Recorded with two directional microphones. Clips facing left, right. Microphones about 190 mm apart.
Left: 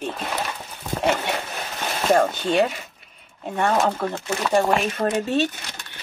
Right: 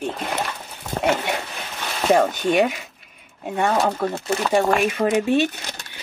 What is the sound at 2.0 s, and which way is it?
Speech, 10° right (ahead or behind).